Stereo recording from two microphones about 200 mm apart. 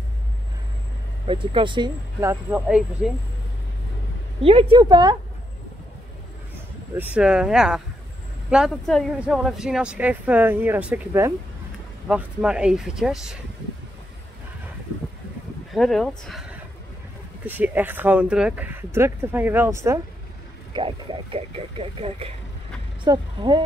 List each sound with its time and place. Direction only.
1.2 s speech: 25° right (ahead or behind)
4.4 s speech: 30° right (ahead or behind)
7.0 s speech: 5° right (ahead or behind)
15.7 s speech: centre (ahead or behind)
20.7 s speech: 25° right (ahead or behind)